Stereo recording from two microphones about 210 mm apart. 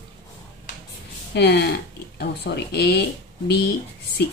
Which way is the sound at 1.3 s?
50° left (ahead or behind).